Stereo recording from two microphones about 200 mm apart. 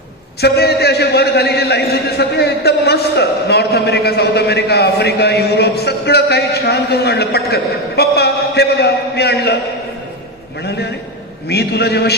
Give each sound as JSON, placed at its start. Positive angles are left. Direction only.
{"t": 0.4, "sound": "a man's voice", "side_deg": 55}
{"t": 11.4, "sound": "a man's voice", "side_deg": 55}